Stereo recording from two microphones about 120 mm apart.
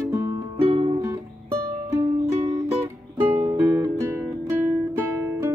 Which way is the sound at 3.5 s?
20° right (ahead or behind).